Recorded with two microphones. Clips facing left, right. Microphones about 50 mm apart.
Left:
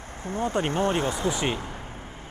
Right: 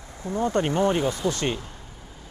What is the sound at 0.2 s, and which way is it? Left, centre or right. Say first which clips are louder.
Speech: right 3 dB; left.